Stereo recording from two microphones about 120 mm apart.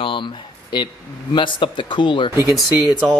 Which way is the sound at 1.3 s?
45° left (ahead or behind).